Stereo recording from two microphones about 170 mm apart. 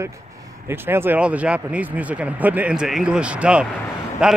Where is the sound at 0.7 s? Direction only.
15° right (ahead or behind).